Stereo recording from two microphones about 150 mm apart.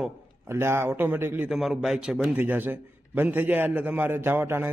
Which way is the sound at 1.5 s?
Centre (ahead or behind).